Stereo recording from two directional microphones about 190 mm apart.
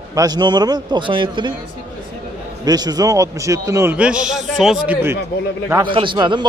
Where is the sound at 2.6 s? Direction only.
20° right (ahead or behind); by 4.9 s centre (ahead or behind).